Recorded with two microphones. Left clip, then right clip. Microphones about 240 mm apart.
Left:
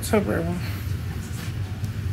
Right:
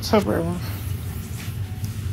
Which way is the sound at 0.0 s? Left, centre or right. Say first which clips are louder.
Right 3 dB; centre.